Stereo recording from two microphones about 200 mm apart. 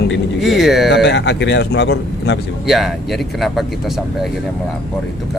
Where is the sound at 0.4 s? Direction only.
Centre (ahead or behind).